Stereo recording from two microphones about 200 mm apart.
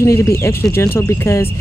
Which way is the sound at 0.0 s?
15° left (ahead or behind).